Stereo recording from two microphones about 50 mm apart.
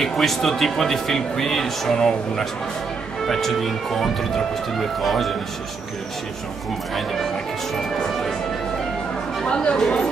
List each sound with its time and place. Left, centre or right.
0.0 s speech: centre
7.7 s speech: centre
9.4 s speech: centre